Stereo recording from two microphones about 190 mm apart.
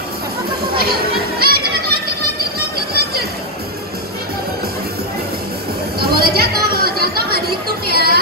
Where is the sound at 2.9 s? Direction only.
55° right (ahead or behind).